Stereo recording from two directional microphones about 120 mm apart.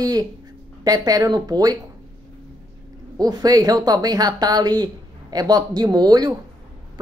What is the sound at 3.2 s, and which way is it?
Speech, 30° right (ahead or behind).